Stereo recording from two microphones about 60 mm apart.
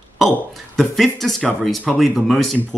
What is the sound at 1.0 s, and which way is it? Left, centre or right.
Speech, centre.